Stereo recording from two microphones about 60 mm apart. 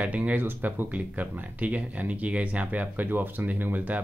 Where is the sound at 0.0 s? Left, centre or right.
Right.